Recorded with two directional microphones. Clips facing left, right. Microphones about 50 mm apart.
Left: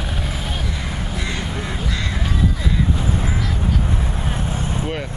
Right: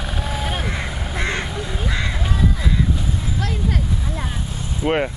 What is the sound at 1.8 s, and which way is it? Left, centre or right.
Honk, centre.